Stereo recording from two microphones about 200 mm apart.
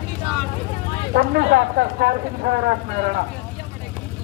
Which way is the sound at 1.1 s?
55° right (ahead or behind).